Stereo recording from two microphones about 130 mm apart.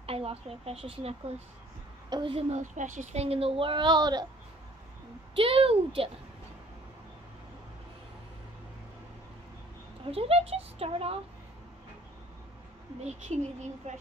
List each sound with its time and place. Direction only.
0.0 s speech: 50° right (ahead or behind)
2.0 s a child's voice: 35° right (ahead or behind)
2.3 s a woman's voice: 70° right (ahead or behind); by 4.3 s 30° right (ahead or behind)
5.3 s a woman's voice: 45° right (ahead or behind)
10.1 s a woman's voice: 50° right (ahead or behind)
13.3 s speech: 55° right (ahead or behind)